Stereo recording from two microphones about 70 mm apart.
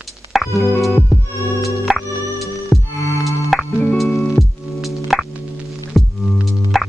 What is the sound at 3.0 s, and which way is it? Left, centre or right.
Music, left.